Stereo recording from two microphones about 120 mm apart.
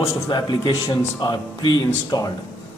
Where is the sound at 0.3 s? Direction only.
35° left (ahead or behind).